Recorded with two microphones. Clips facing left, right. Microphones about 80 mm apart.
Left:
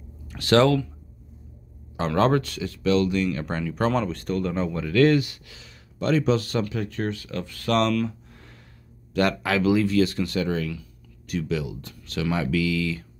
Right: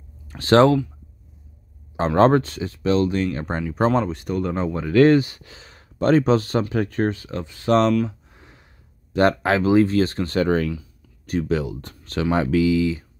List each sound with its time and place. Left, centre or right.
0.3 s speech: right
2.0 s speech: right
8.1 s a sound: centre
9.1 s speech: right
10.7 s speech: right